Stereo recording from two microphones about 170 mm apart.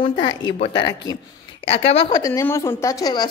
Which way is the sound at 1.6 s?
35° left (ahead or behind).